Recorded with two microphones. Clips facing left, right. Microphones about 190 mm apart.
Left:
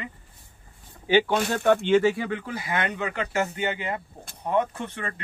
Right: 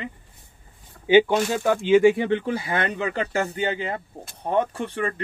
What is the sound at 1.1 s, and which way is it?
Speech, 15° right (ahead or behind).